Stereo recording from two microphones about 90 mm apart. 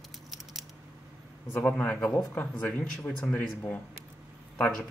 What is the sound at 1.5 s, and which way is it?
A man's voice, 20° left (ahead or behind).